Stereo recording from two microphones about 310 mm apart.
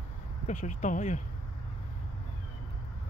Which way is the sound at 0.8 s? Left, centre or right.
Left.